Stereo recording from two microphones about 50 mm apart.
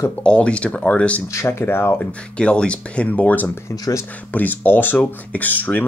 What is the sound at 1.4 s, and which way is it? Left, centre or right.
Speech, left.